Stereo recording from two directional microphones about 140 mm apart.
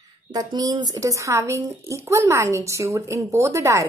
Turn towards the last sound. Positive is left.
turn(degrees=-20)  # may be behind; listen again after turning